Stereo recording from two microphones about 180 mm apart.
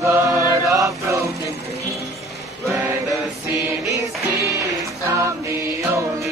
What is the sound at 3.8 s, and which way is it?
Music, 15° right (ahead or behind).